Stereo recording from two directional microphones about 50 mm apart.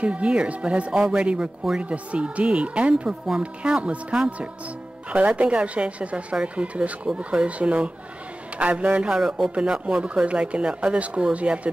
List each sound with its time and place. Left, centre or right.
0.0 s speech: right
3.3 s speech: centre
3.8 s speech: right
9.1 s speech: centre